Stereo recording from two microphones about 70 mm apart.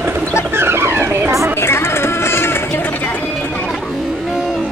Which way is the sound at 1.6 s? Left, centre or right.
Left.